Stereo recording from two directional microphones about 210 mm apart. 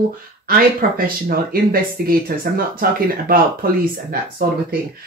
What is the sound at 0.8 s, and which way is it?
Speech, 40° right (ahead or behind).